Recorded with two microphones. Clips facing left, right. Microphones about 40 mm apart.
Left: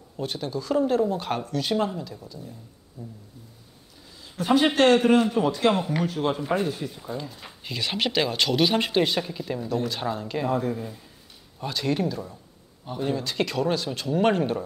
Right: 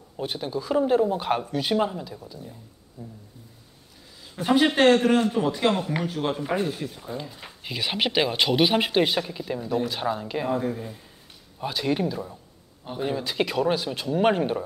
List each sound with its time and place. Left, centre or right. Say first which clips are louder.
0.2 s speech: right 1 dB; centre
4.4 s a man's voice: even; centre
4.9 s a man's voice: left 1 dB; centre
6.2 s a man's voice: even; centre